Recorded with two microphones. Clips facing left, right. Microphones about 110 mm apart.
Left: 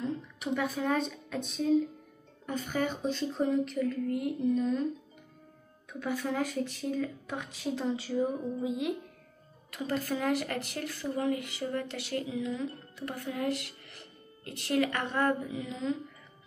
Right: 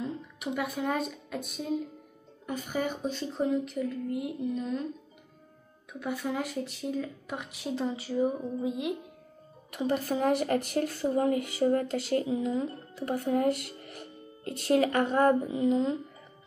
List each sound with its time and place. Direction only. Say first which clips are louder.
0.0 s speech: even; 5° right (ahead or behind)
5.9 s speech: even; centre (ahead or behind)
9.7 s speech: right 4 dB; 20° right (ahead or behind)
10.1 s speech: right 5 dB; 35° right (ahead or behind)